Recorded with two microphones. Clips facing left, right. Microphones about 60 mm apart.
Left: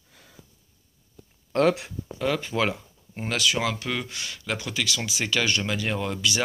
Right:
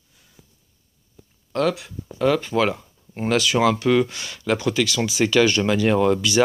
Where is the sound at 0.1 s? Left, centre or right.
Left.